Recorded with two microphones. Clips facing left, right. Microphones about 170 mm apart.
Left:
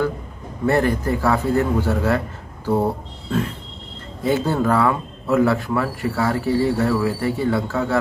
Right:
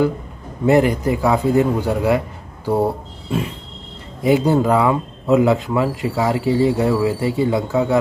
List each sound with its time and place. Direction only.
0.7 s speech: 15° right (ahead or behind)